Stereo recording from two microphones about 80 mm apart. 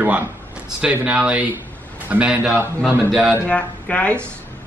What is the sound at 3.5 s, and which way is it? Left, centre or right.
Speech, centre.